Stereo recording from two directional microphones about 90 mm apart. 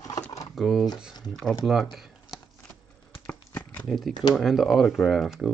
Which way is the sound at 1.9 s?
5° right (ahead or behind).